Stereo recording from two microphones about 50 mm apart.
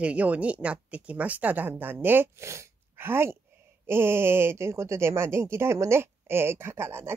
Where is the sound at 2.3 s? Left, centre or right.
Right.